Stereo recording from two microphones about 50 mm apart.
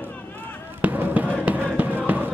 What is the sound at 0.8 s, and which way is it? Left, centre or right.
Basketball bounce, right.